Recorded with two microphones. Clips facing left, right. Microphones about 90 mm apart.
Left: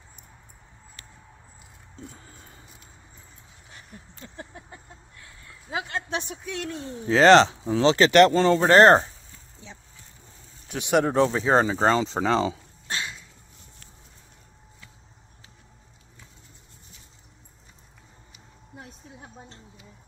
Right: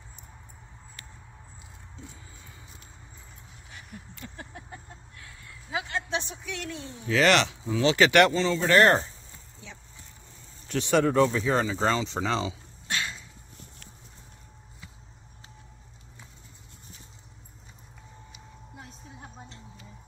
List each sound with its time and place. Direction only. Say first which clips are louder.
2.0 s a sound: left 3 dB; 45° left (ahead or behind)
3.7 s a sound: right 2 dB; 30° left (ahead or behind)
5.7 s speech: left 1 dB; 40° left (ahead or behind)
8.7 s speech: left 5 dB; 30° left (ahead or behind)
10.7 s speech: left 1 dB; 15° left (ahead or behind)
11.1 s speech: left 2 dB; 30° left (ahead or behind)